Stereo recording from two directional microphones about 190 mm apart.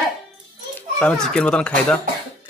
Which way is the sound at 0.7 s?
5° left (ahead or behind).